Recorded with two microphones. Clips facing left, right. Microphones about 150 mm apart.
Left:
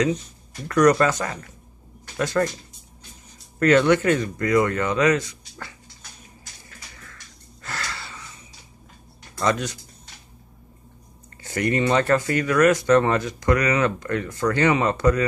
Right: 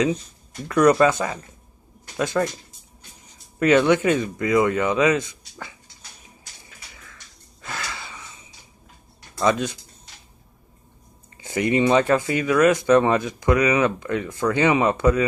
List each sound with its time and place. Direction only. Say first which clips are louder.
0.8 s speech: right 2 dB; 15° right (ahead or behind)
2.1 s speech: even; 15° right (ahead or behind)
3.5 s speech: even; 15° right (ahead or behind)
6.7 s a sound: left 2 dB; 15° right (ahead or behind)
7.6 s wheeze: even; 15° right (ahead or behind)
9.4 s speech: right 2 dB; 20° right (ahead or behind)
11.4 s speech: right 2 dB; 20° right (ahead or behind)